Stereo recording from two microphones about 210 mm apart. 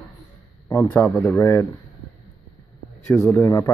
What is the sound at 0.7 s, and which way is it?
Speech, 15° left (ahead or behind).